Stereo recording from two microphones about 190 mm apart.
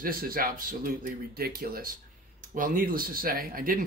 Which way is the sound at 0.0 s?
50° right (ahead or behind).